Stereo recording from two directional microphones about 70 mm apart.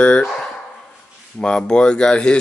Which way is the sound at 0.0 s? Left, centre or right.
Centre.